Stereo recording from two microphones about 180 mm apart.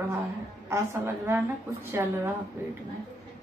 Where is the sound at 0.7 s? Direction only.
15° right (ahead or behind).